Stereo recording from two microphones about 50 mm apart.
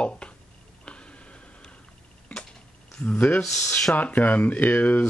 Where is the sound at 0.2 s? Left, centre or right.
Centre.